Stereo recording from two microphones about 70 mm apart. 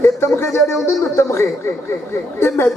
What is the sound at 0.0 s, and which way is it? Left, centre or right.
Music, left.